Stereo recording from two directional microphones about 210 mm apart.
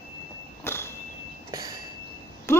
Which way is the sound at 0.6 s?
10° left (ahead or behind).